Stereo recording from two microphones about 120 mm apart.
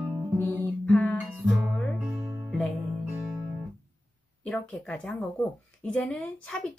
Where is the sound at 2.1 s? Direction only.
25° right (ahead or behind).